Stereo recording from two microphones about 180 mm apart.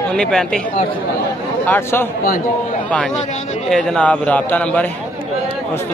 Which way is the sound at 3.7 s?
5° left (ahead or behind).